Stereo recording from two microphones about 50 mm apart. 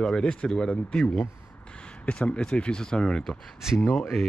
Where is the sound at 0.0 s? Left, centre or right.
Centre.